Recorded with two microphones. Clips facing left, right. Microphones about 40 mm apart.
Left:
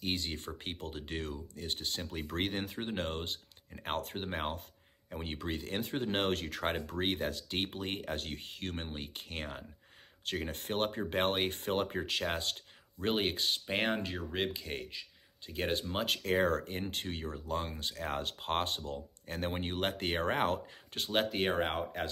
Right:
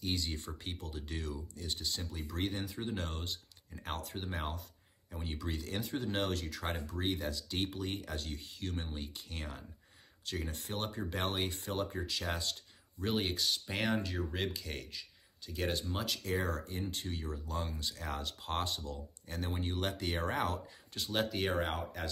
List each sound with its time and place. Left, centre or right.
0.0 s speech: left